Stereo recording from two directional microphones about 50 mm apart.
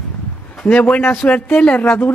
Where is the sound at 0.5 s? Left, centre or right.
Left.